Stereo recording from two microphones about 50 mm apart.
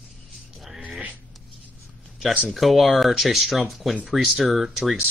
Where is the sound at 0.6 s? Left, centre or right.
Centre.